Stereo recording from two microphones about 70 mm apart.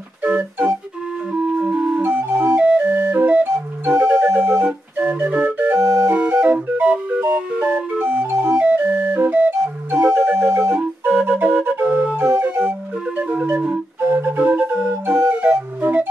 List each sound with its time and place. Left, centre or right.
0.2 s music: right
2.0 s music: right
4.0 s music: right
4.6 s organ: centre
5.8 s music: right
6.1 s music: right